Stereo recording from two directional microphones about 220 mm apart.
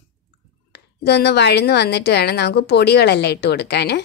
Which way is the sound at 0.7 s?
50° left (ahead or behind).